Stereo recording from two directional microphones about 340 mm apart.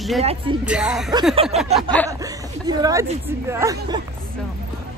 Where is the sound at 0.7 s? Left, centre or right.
Centre.